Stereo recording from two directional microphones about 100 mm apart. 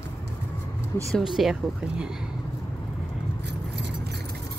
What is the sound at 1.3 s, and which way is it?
Speech, 5° right (ahead or behind).